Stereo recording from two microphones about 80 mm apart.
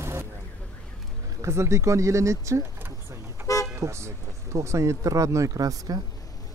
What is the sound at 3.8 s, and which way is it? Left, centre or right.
Speech, right.